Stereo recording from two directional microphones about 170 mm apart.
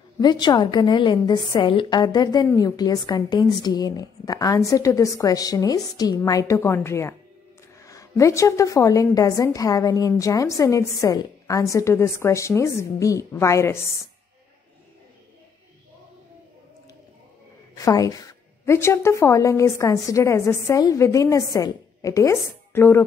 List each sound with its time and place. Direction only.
0.2 s a woman's voice: 25° left (ahead or behind)
17.7 s a woman's voice: 20° left (ahead or behind)